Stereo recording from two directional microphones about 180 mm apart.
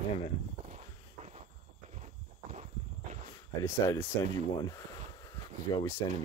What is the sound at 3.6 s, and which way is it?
Speech, 15° left (ahead or behind).